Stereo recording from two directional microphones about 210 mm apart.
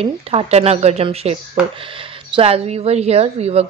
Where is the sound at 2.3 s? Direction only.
30° right (ahead or behind).